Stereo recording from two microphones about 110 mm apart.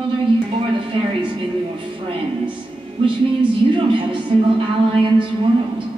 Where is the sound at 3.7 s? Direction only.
50° right (ahead or behind).